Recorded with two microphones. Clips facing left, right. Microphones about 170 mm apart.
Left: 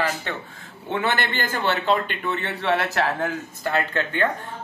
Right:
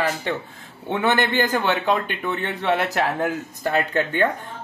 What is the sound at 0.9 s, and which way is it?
A man's voice, 15° right (ahead or behind).